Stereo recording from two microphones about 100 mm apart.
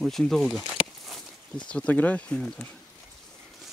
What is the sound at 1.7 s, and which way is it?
Speech, 15° left (ahead or behind).